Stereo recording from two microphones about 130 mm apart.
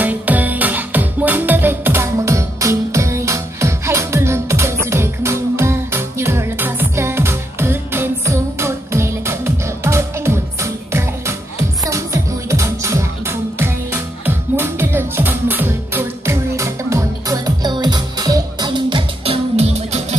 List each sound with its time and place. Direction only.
0.0 s music: 10° right (ahead or behind)
17.6 s music: 35° right (ahead or behind); by 20.2 s 55° right (ahead or behind)